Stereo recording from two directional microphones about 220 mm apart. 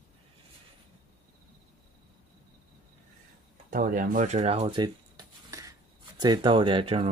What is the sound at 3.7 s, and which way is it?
Speech, 35° right (ahead or behind).